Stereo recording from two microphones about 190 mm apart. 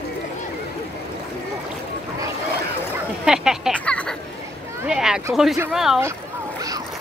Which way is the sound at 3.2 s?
5° right (ahead or behind).